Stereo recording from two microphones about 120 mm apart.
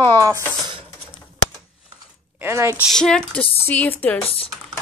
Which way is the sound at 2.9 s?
5° left (ahead or behind).